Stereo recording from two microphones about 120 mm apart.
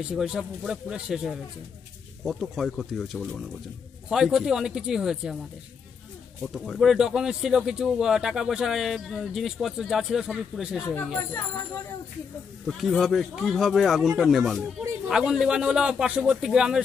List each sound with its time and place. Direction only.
0.1 s speech: 5° right (ahead or behind)
6.4 s speech: centre (ahead or behind)
12.6 s speech: centre (ahead or behind)